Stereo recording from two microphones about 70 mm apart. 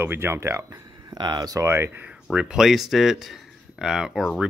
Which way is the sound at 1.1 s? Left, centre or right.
Right.